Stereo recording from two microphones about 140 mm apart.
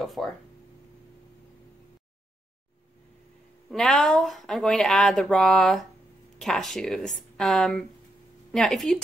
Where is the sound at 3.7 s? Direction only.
5° left (ahead or behind).